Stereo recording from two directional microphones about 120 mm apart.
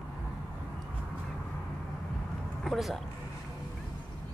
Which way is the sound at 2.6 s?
Centre (ahead or behind).